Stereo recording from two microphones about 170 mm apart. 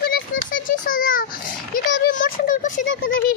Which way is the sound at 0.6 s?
50° left (ahead or behind).